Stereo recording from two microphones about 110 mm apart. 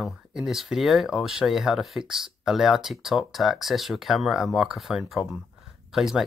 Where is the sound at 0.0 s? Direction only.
5° right (ahead or behind).